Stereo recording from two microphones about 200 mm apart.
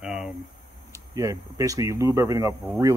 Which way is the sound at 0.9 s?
15° right (ahead or behind).